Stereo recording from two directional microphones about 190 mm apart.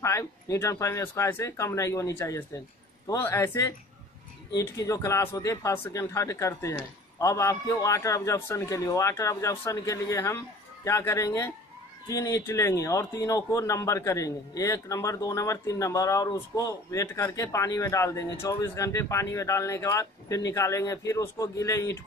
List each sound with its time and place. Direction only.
0.0 s a man's voice: 15° left (ahead or behind)